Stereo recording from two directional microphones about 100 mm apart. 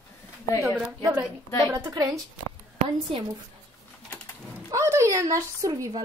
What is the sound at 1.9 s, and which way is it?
Speech, 40° right (ahead or behind).